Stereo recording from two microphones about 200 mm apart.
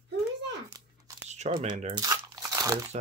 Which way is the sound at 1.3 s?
35° right (ahead or behind).